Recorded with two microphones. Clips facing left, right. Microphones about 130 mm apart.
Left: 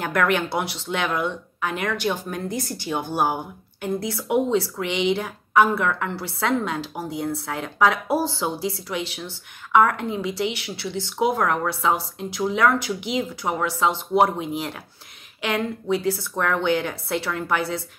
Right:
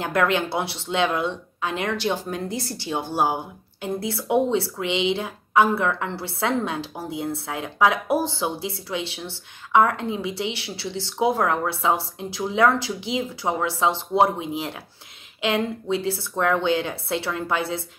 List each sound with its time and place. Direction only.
0.0 s speech: 25° right (ahead or behind)